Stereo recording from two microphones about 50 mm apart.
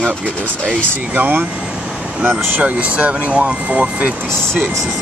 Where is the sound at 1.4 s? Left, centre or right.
Centre.